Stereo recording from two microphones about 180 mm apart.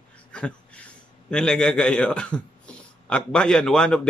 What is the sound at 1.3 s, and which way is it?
Speech, 5° left (ahead or behind).